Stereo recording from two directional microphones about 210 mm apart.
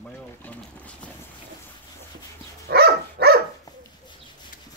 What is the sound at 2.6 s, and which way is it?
Dog, 50° right (ahead or behind).